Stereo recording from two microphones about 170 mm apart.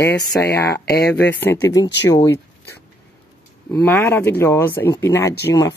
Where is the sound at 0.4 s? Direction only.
75° left (ahead or behind).